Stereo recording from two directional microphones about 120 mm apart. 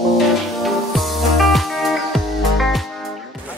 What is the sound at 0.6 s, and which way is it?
Music, centre (ahead or behind).